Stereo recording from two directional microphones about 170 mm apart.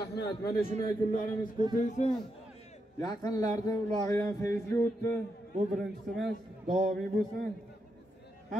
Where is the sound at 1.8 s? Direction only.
45° left (ahead or behind).